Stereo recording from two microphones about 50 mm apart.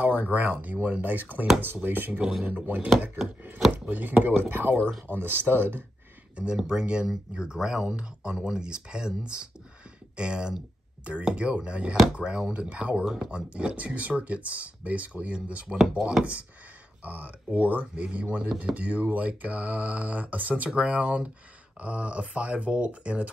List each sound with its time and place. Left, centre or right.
0.0 s speech: right
6.3 s speech: centre
13.0 s speech: centre
13.3 s speech: right
17.0 s speech: right